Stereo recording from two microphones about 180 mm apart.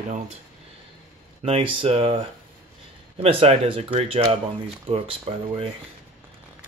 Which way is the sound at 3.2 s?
30° right (ahead or behind).